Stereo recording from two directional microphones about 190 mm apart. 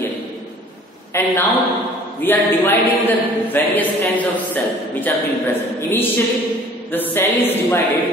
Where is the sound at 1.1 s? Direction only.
15° left (ahead or behind).